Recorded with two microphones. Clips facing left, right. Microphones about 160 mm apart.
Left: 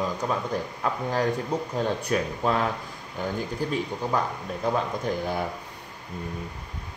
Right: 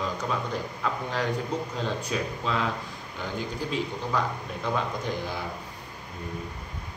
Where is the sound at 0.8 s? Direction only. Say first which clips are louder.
Left 4 dB; 45° left (ahead or behind).